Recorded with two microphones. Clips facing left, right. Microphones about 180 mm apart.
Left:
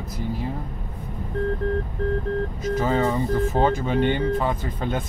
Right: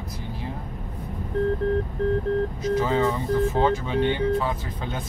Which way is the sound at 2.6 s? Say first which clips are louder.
Left 3 dB; 45° left (ahead or behind).